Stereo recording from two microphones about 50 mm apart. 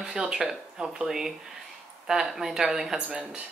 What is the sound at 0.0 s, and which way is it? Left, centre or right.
Speech, centre.